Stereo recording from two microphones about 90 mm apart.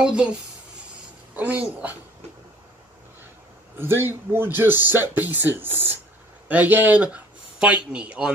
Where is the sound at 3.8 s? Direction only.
25° right (ahead or behind).